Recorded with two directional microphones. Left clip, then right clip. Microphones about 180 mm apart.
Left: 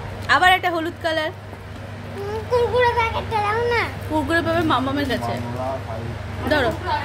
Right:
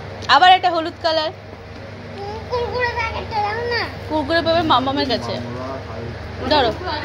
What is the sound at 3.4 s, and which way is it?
Speech, 55° left (ahead or behind).